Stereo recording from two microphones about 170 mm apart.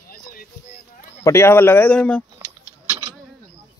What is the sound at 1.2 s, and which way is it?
Speech, 15° left (ahead or behind).